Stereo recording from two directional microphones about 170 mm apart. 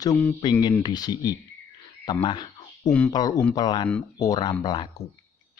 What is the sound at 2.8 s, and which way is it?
Speech, 5° left (ahead or behind).